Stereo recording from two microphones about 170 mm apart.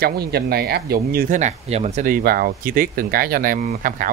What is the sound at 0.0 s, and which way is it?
Speech, 65° right (ahead or behind).